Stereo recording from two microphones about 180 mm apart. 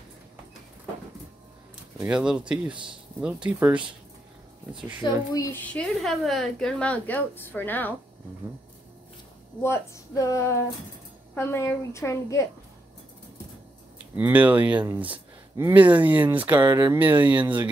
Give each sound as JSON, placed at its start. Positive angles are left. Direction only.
{"t": 2.0, "sound": "speech", "side_deg": -5}
{"t": 2.7, "sound": "speech", "side_deg": -25}
{"t": 3.4, "sound": "speech", "side_deg": -10}
{"t": 5.0, "sound": "a woman's voice", "side_deg": 20}
{"t": 9.6, "sound": "a woman's voice", "side_deg": 15}
{"t": 14.1, "sound": "speech", "side_deg": -10}